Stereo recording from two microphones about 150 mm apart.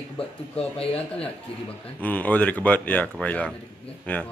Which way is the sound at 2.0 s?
10° left (ahead or behind).